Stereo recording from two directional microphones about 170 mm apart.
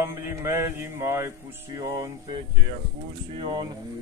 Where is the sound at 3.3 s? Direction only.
30° right (ahead or behind).